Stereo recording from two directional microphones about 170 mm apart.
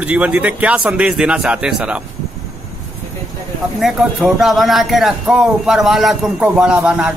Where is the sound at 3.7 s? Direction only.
Centre (ahead or behind).